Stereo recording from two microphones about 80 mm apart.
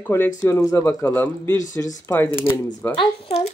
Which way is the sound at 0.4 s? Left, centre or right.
Left.